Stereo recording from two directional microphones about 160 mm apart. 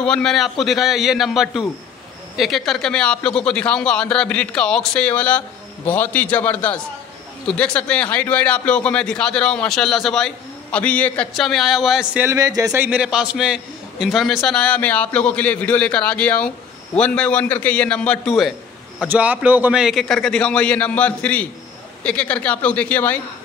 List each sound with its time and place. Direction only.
0.0 s a man's voice: 5° left (ahead or behind)
12.3 s speech: 20° right (ahead or behind)
12.8 s a man's voice: 5° right (ahead or behind); by 23.1 s 10° left (ahead or behind)